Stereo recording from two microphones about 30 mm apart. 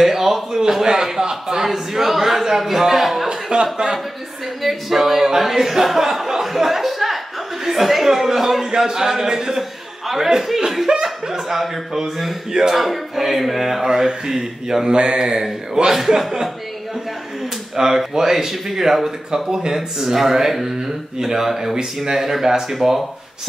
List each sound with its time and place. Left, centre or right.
0.0 s a sound: centre
1.3 s a man's voice: centre
3.7 s speech: right
4.6 s a man's voice: centre
13.8 s a man's voice: right
14.9 s speech: right
16.2 s a man's voice: centre
17.7 s a man's voice: centre
20.0 s a man's voice: centre